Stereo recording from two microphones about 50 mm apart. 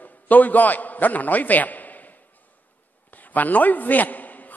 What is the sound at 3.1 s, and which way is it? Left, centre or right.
A man's voice, left.